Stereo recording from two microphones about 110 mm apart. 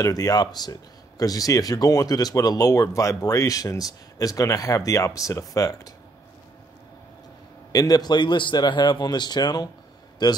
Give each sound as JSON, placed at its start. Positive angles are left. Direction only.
{"t": 0.0, "sound": "speech", "side_deg": 30}
{"t": 7.7, "sound": "speech", "side_deg": 35}